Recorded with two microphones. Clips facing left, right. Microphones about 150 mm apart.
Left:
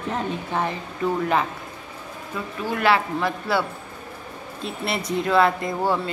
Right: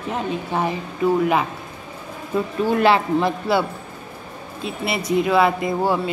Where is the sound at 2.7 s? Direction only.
25° right (ahead or behind).